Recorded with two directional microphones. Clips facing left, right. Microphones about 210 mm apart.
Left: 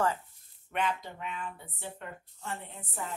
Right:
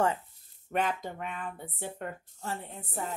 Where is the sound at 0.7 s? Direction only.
40° right (ahead or behind).